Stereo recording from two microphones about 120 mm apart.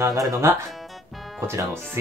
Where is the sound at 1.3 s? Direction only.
20° right (ahead or behind).